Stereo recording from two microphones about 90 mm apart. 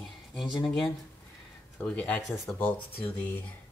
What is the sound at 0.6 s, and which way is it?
Speech, 5° left (ahead or behind).